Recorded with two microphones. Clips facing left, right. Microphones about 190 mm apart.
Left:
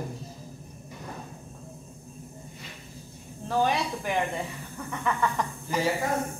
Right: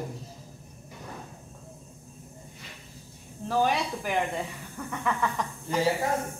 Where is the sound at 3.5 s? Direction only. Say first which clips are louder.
Even; 5° right (ahead or behind).